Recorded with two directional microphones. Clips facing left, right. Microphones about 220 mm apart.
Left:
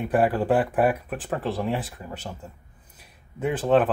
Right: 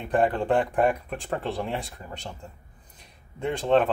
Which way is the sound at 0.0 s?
5° left (ahead or behind).